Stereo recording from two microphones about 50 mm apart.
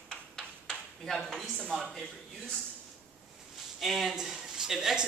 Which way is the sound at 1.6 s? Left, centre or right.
Centre.